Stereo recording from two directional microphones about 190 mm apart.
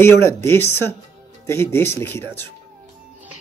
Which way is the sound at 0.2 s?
15° left (ahead or behind).